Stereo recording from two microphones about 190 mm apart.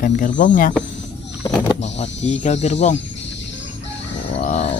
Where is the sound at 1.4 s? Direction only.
25° left (ahead or behind).